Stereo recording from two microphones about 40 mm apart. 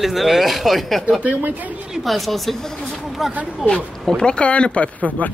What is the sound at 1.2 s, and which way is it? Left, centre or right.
Speech, right.